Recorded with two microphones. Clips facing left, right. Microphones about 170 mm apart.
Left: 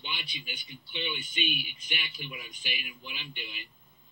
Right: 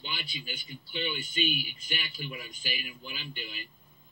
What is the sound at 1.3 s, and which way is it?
Speech, 40° right (ahead or behind).